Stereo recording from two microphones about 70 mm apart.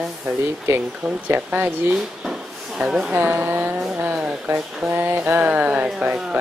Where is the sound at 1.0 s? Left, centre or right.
Right.